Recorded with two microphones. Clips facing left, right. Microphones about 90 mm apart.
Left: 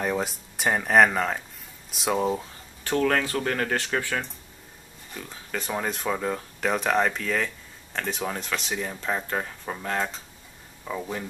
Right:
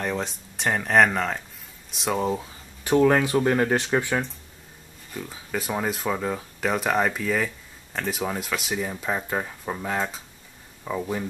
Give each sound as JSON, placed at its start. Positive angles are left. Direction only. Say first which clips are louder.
{"t": 0.0, "sound": "speech", "louder": "left 1 dB", "side_deg": 5}
{"t": 2.8, "sound": "speech", "louder": "right 5 dB", "side_deg": -15}
{"t": 5.1, "sound": "speech", "louder": "right 3 dB", "side_deg": -5}